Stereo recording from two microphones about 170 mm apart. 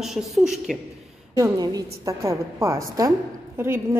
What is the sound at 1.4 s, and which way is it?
A woman's voice, 20° right (ahead or behind).